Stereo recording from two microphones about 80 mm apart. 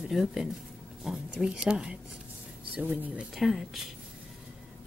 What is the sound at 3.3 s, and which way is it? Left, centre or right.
Speech, centre.